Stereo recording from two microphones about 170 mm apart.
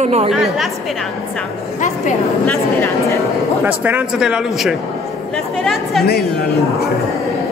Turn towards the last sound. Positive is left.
turn(degrees=0)  # may be behind; listen again after turning